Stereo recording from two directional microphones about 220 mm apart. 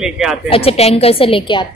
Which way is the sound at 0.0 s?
Centre (ahead or behind).